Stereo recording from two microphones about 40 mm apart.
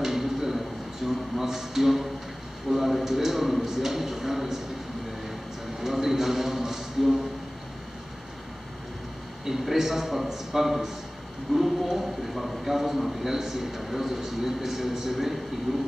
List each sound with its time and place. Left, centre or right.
0.0 s a sound: centre
2.7 s a man's voice: centre
5.8 s a man's voice: centre
9.4 s a man's voice: centre